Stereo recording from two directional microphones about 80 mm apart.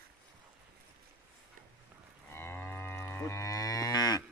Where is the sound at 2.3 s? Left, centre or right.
Left.